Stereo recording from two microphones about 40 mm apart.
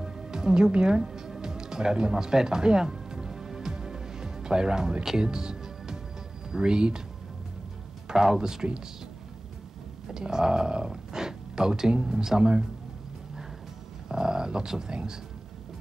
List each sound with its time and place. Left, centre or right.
0.0 s music: centre
6.5 s speech: centre
8.1 s speech: centre
10.0 s speech: centre
14.0 s a sound: centre